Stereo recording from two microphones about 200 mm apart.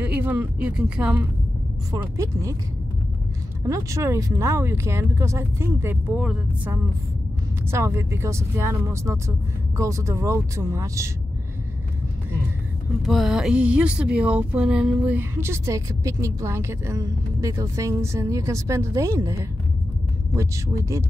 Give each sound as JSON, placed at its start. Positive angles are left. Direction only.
{"t": 0.0, "sound": "speech", "side_deg": -5}
{"t": 1.9, "sound": "speech", "side_deg": -15}
{"t": 3.6, "sound": "speech", "side_deg": -15}
{"t": 13.0, "sound": "speech", "side_deg": 0}